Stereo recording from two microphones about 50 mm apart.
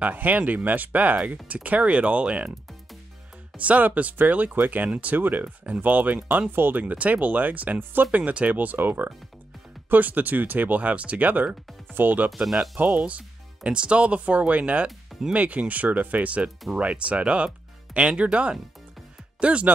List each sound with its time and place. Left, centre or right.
0.0 s speech: right
3.5 s speech: right
6.5 s speech: right
6.8 s speech: right
8.2 s speech: right
13.7 s speech: right